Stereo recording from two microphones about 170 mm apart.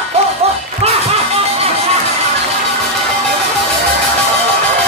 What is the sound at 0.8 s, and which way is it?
Music, 35° right (ahead or behind).